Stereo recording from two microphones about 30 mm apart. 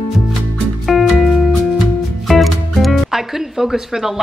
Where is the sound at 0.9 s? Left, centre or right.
Centre.